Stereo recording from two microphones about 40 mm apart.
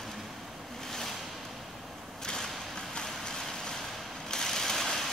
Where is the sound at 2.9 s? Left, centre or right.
Centre.